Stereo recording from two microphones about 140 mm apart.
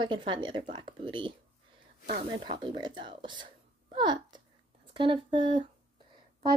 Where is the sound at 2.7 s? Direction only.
35° right (ahead or behind).